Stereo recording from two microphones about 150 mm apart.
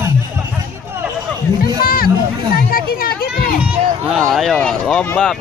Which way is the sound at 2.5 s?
80° left.